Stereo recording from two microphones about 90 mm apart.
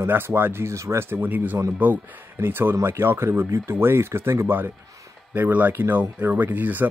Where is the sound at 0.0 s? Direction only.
25° right (ahead or behind).